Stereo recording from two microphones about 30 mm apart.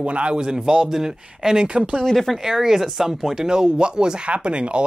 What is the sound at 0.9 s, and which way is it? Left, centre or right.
Speech, centre.